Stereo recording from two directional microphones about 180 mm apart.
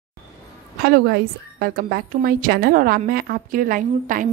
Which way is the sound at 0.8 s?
60° right (ahead or behind).